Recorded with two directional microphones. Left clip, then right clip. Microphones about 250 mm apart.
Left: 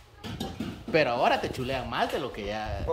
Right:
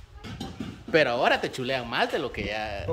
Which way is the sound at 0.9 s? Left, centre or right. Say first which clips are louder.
Right 2 dB; centre.